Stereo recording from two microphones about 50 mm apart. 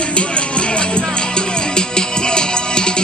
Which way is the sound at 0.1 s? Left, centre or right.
Left.